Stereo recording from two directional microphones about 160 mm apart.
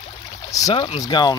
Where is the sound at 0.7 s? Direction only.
30° left (ahead or behind).